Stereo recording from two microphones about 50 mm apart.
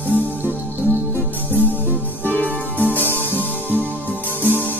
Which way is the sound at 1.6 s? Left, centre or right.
Left.